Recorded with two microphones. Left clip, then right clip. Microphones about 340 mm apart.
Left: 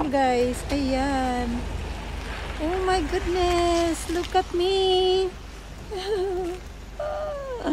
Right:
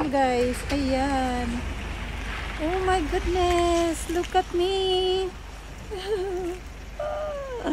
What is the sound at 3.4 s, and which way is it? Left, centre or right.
Speech, centre.